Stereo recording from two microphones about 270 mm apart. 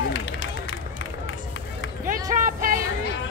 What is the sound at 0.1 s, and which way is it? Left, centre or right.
Run, left.